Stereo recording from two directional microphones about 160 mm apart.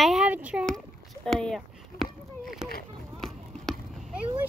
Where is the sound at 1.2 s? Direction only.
5° left (ahead or behind).